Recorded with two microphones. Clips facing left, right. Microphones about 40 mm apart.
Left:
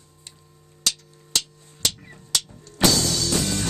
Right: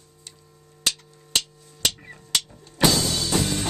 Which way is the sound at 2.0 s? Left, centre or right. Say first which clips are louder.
Right 1 dB; centre.